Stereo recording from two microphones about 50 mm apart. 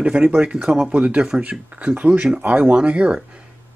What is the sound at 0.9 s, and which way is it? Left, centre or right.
Speech, right.